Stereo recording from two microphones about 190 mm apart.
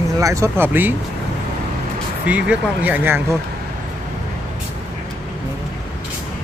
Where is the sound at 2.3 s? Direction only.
5° right (ahead or behind).